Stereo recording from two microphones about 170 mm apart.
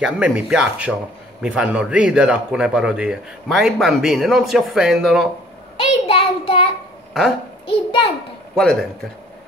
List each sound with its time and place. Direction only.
0.0 s speech: 5° right (ahead or behind)
5.8 s child singing: 35° left (ahead or behind)
7.6 s a child's voice: 30° left (ahead or behind)